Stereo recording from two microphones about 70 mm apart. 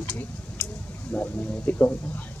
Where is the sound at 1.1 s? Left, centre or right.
Left.